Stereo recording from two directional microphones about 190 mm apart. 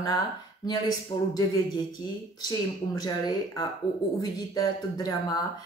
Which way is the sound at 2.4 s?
20° left (ahead or behind).